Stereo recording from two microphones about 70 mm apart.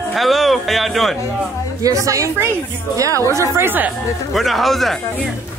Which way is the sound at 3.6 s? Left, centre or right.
Right.